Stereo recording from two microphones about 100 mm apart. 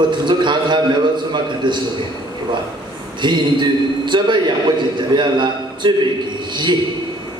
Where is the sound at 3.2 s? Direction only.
50° right (ahead or behind).